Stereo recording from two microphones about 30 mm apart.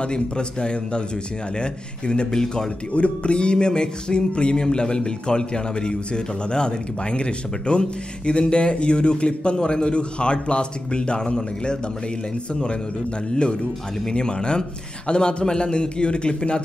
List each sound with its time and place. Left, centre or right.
0.0 s music: left
2.4 s speech: centre
2.9 s music: left
13.3 s music: left